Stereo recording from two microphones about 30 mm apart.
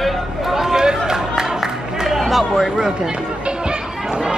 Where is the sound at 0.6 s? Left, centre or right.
Centre.